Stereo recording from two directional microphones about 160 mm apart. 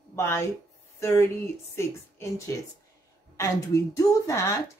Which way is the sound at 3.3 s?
20° left (ahead or behind).